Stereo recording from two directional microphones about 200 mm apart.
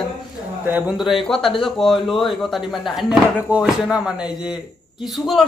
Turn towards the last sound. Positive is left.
turn(degrees=0)  # may be behind; listen again after turning